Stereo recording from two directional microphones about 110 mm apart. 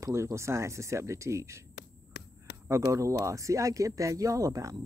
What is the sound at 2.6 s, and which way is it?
Speech, 30° right (ahead or behind).